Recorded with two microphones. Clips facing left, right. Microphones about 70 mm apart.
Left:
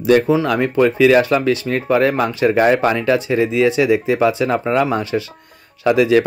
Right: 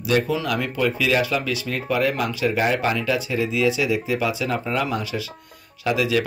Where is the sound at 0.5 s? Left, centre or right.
Left.